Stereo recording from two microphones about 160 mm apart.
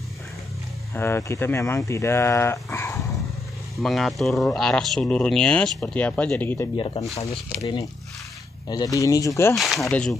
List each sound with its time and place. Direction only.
0.9 s speech: 15° left (ahead or behind)
3.8 s speech: centre (ahead or behind)
6.8 s speech: 35° left (ahead or behind); by 9.6 s 20° left (ahead or behind)
9.6 s speech: centre (ahead or behind)